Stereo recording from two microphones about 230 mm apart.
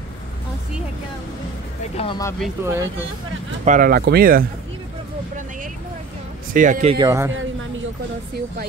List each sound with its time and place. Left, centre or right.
2.0 s speech: centre
2.6 s speech: centre
3.6 s speech: right
6.5 s speech: right
7.1 s speech: centre